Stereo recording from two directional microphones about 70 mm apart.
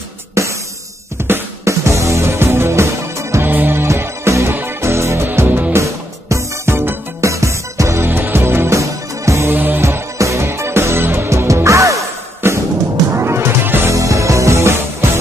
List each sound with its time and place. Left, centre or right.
1.2 s music: right
3.4 s music: right
3.8 s music: right
5.7 s music: right
9.5 s music: right
9.8 s music: right
12.4 s music: right
13.9 s music: right